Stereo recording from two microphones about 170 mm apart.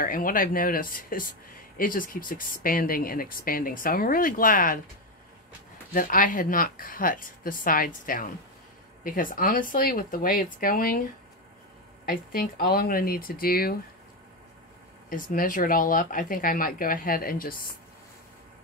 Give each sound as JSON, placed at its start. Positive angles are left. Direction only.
{"t": 0.0, "sound": "speech", "side_deg": 55}
{"t": 5.9, "sound": "speech", "side_deg": 50}
{"t": 12.1, "sound": "speech", "side_deg": 55}
{"t": 15.0, "sound": "speech", "side_deg": 55}